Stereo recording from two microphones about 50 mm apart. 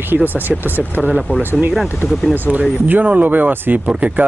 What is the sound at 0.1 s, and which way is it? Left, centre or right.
Speech, right.